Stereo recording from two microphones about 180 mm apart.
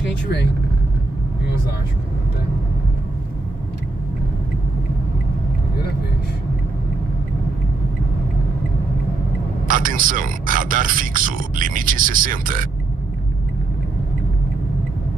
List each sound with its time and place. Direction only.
9.7 s speech: 50° right (ahead or behind)